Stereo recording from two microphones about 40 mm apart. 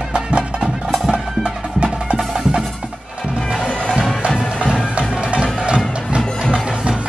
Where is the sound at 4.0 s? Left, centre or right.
Centre.